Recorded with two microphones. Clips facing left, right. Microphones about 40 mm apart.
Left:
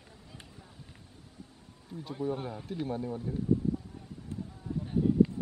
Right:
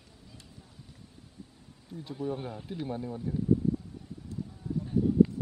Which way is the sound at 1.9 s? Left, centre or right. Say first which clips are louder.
Even; left.